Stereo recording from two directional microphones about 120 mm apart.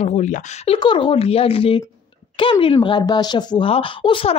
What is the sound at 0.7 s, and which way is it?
A woman's voice, 45° left (ahead or behind).